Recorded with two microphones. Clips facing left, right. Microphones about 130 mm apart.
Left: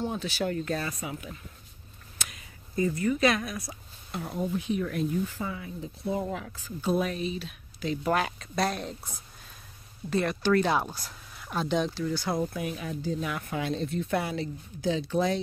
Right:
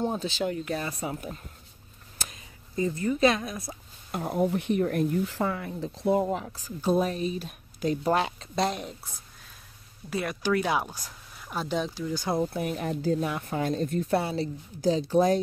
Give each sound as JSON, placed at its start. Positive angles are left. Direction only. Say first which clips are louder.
{"t": 0.0, "sound": "speech", "louder": "right 3 dB", "side_deg": -35}
{"t": 0.3, "sound": "speech", "louder": "even", "side_deg": -15}
{"t": 0.8, "sound": "speech", "louder": "right 3 dB", "side_deg": -30}
{"t": 2.7, "sound": "speech", "louder": "left 1 dB", "side_deg": -25}
{"t": 4.1, "sound": "speech", "louder": "right 5 dB", "side_deg": -50}
{"t": 5.2, "sound": "speech", "louder": "right 5 dB", "side_deg": -70}
{"t": 6.2, "sound": "speech", "louder": "right 4 dB", "side_deg": -30}
{"t": 8.0, "sound": "speech", "louder": "left 1 dB", "side_deg": -25}
{"t": 10.0, "sound": "speech", "louder": "left 2 dB", "side_deg": -10}
{"t": 12.6, "sound": "speech", "louder": "right 5 dB", "side_deg": -55}
{"t": 13.2, "sound": "speech", "louder": "right 3 dB", "side_deg": -35}
{"t": 14.1, "sound": "speech", "louder": "right 3 dB", "side_deg": -30}